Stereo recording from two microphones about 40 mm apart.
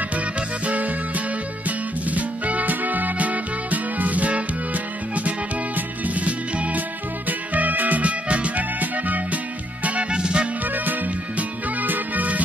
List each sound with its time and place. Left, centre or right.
0.7 s music: right
10.1 s music: right
10.6 s music: right